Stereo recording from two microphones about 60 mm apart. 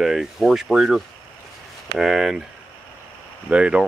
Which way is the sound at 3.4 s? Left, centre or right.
Right.